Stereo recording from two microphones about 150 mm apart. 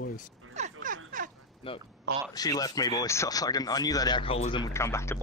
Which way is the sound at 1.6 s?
35° left (ahead or behind).